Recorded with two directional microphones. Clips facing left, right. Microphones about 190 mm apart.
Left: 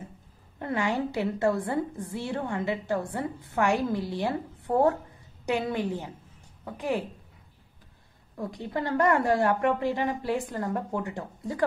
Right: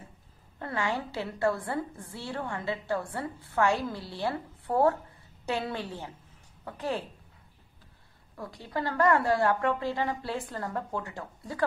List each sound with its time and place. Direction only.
0.6 s a woman's voice: 20° left (ahead or behind)
8.4 s a woman's voice: 20° left (ahead or behind)